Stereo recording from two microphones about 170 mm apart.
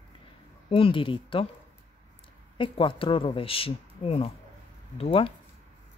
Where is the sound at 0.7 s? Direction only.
30° left (ahead or behind).